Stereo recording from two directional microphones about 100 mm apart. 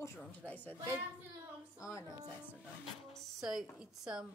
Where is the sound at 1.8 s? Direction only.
35° left (ahead or behind).